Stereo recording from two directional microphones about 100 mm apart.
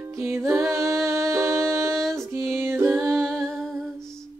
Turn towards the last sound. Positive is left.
turn(degrees=0)  # may be behind; listen again after turning